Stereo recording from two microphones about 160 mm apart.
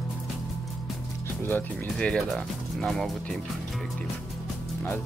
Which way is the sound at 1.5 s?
5° left (ahead or behind).